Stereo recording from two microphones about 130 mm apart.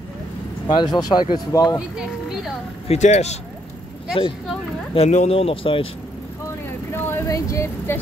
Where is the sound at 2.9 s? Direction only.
60° left (ahead or behind).